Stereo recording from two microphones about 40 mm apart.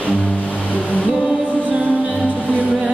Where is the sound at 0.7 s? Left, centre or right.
Left.